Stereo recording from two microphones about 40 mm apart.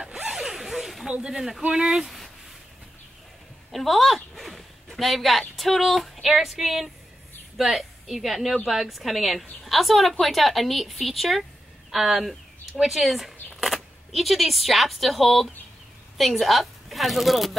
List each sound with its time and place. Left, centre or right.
0.3 s zipper: centre
1.2 s speech: centre
2.0 s a sound: centre
3.7 s a sound: centre
5.6 s a woman's voice: centre
11.9 s a woman's voice: centre